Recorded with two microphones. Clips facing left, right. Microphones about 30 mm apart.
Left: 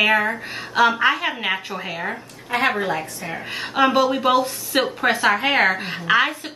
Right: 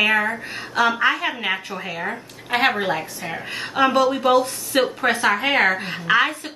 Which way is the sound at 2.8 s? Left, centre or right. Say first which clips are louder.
Even; centre.